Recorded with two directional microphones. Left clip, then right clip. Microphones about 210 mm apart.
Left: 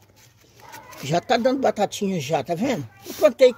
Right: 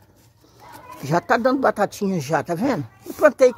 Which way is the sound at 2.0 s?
35° right (ahead or behind).